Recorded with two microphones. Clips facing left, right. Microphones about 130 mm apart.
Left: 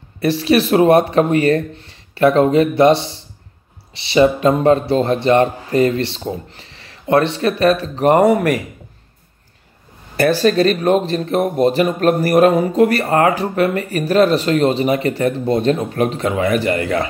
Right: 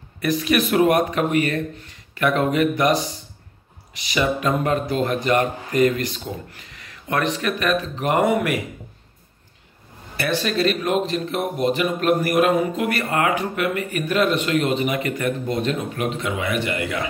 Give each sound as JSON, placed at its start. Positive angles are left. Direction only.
{"t": 0.2, "sound": "speech", "side_deg": 30}
{"t": 10.1, "sound": "speech", "side_deg": 40}